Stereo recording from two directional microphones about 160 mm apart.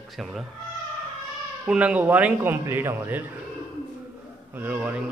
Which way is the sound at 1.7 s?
10° right (ahead or behind).